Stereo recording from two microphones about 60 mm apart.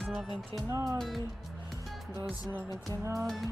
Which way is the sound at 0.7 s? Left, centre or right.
Right.